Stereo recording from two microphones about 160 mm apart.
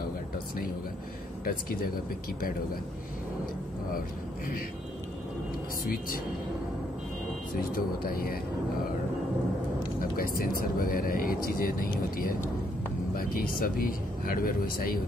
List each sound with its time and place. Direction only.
1.4 s speech: 60° left (ahead or behind)
5.9 s speech: 65° left (ahead or behind)
7.5 s speech: 65° left (ahead or behind)
9.9 s speech: 60° left (ahead or behind)